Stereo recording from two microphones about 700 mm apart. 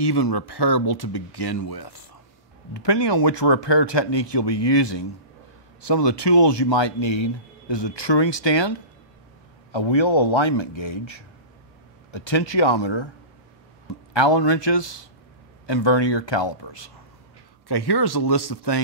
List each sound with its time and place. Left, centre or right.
0.0 s speech: left
14.1 s speech: left